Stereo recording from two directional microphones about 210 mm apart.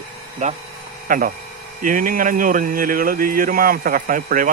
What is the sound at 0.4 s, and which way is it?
Speech, 35° right (ahead or behind).